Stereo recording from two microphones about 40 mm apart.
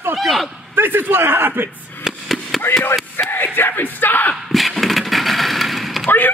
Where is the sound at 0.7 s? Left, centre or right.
Right.